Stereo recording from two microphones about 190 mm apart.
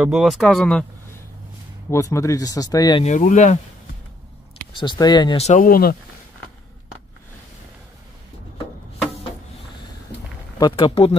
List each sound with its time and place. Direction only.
0.0 s speech: 5° right (ahead or behind)
1.9 s speech: 15° left (ahead or behind)
3.0 s speech: 40° left (ahead or behind)
4.7 s speech: 25° left (ahead or behind)
5.5 s speech: 50° left (ahead or behind)
10.6 s speech: 30° left (ahead or behind)